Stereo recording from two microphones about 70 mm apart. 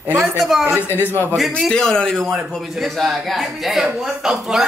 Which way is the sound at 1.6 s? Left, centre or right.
Centre.